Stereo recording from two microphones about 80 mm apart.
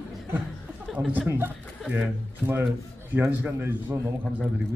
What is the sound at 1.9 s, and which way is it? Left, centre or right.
Speech, right.